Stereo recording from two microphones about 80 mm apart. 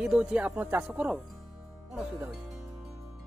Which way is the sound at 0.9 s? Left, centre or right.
Centre.